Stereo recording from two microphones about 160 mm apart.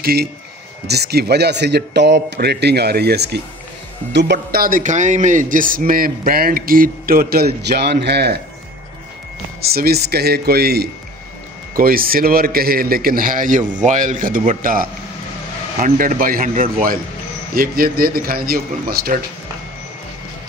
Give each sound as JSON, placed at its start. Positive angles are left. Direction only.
{"t": 0.0, "sound": "a man's voice", "side_deg": -80}
{"t": 0.8, "sound": "a man's voice", "side_deg": -90}
{"t": 9.6, "sound": "speech", "side_deg": -75}
{"t": 11.7, "sound": "a man's voice", "side_deg": -65}